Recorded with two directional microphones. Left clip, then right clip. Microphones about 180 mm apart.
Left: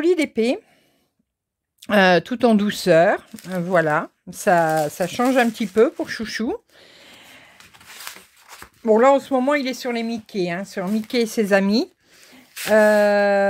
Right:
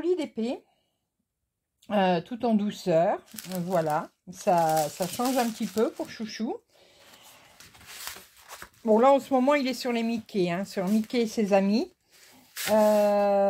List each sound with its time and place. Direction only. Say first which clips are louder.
0.0 s speech: left 10 dB; 70° left (ahead or behind)
1.8 s speech: left 10 dB; 70° left (ahead or behind); by 7.1 s 45° left (ahead or behind)
8.8 s speech: left 6 dB; 35° left (ahead or behind)
12.6 s a sound: left 7 dB; 50° left (ahead or behind)